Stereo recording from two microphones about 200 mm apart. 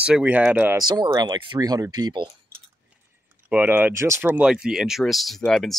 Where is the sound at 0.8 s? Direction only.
20° right (ahead or behind).